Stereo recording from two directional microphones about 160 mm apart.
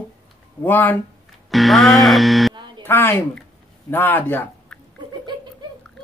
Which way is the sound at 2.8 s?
15° left (ahead or behind).